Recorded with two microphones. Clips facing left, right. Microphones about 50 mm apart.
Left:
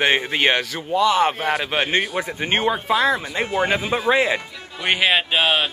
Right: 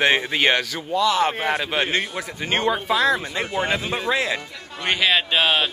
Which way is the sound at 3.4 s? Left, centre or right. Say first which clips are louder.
Left 3 dB; centre.